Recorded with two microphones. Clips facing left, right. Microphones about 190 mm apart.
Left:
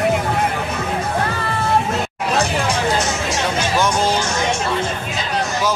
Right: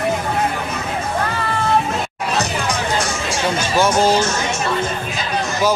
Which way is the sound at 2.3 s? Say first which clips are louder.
Left 2 dB; 25° left (ahead or behind).